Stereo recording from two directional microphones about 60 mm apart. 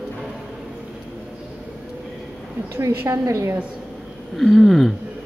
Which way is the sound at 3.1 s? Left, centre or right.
Right.